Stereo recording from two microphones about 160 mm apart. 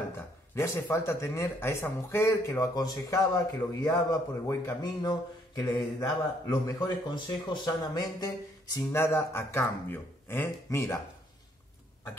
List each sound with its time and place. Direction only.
0.8 s speech: 15° left (ahead or behind)